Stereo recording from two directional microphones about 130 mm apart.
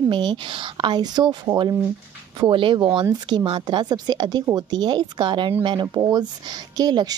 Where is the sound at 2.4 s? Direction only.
40° right (ahead or behind).